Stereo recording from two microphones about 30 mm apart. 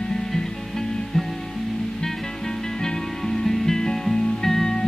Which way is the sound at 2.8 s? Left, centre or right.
Centre.